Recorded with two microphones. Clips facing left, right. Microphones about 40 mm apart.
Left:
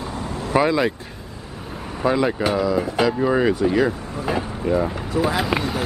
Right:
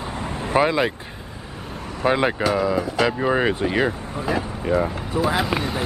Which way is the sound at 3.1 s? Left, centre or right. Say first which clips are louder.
Left 2 dB; right.